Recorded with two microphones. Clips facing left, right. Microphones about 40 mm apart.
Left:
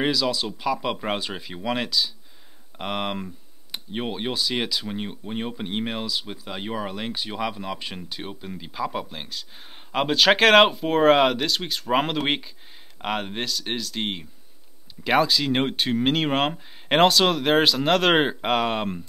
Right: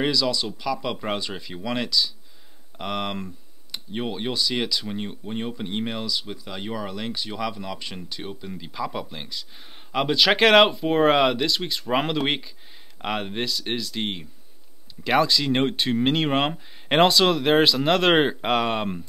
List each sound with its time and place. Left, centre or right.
0.0 s speech: centre